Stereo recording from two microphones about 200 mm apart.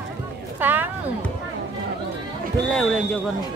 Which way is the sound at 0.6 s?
10° right (ahead or behind).